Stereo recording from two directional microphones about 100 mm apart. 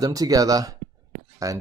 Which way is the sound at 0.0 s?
35° right (ahead or behind).